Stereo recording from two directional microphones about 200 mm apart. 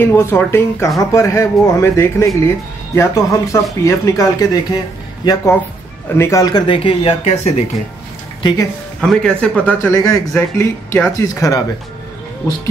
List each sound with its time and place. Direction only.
0.0 s a man's voice: 10° left (ahead or behind); by 7.6 s 30° left (ahead or behind)
8.4 s speech: 20° left (ahead or behind)
9.0 s a man's voice: 5° left (ahead or behind)